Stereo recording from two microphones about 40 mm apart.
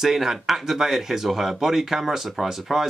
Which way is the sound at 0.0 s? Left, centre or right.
Centre.